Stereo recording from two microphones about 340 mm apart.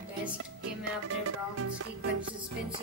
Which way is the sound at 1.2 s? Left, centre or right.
Right.